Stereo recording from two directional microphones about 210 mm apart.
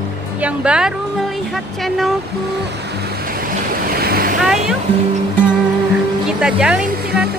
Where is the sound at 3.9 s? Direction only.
45° right (ahead or behind).